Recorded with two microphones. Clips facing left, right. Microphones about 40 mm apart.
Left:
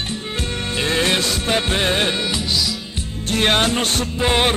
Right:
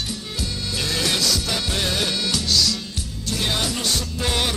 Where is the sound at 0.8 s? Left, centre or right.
Left.